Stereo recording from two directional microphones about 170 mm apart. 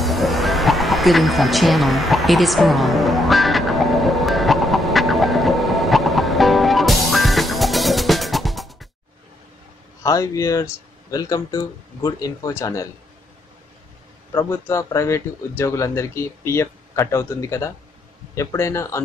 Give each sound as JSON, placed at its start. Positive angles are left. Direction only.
{"t": 0.0, "sound": "a sound", "side_deg": 0}
{"t": 10.0, "sound": "speech", "side_deg": 20}
{"t": 14.3, "sound": "speech", "side_deg": 15}